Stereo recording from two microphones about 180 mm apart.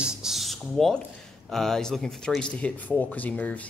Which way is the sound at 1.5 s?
Centre (ahead or behind).